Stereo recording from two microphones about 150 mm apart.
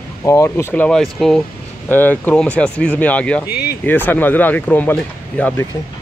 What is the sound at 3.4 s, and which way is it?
Speech, 90° left.